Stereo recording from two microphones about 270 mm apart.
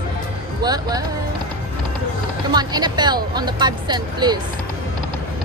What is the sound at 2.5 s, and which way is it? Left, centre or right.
Speech, centre.